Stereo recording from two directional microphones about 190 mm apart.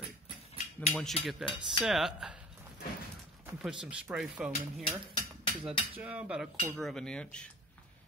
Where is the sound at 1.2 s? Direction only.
30° left (ahead or behind).